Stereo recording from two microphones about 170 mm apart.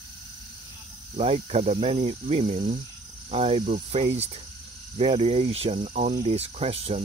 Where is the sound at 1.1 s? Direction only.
35° right (ahead or behind).